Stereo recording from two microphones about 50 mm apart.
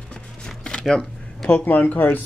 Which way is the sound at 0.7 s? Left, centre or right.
Centre.